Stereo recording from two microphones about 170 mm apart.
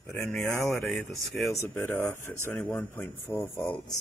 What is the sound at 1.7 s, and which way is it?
Speech, 10° left (ahead or behind).